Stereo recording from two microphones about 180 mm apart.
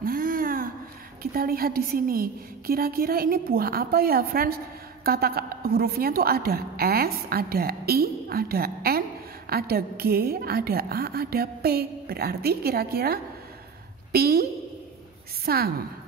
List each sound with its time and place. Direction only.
0.0 s a sound: 50° right (ahead or behind)
1.2 s a woman's voice: 55° right (ahead or behind)
15.4 s a woman's voice: 60° right (ahead or behind)